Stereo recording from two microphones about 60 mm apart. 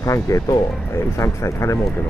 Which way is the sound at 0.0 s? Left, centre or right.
Left.